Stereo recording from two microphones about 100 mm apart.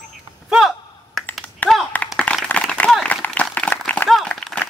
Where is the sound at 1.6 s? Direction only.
15° left (ahead or behind).